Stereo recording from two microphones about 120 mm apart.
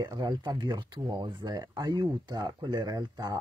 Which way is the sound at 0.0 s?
40° right (ahead or behind).